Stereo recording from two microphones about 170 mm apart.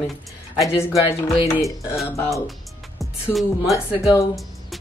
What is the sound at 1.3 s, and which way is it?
Speech, centre (ahead or behind).